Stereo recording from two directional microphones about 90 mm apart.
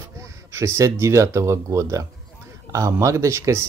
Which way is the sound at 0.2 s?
35° right (ahead or behind).